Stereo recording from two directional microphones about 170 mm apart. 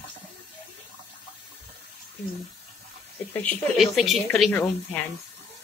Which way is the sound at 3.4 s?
Centre (ahead or behind).